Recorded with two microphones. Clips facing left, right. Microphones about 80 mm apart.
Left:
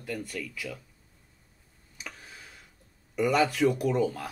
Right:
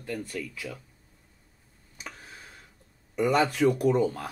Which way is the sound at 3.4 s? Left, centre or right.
Right.